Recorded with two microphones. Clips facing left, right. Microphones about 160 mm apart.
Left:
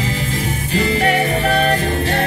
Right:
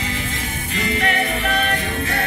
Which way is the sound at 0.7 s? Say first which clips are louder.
Left 5 dB; 35° left (ahead or behind).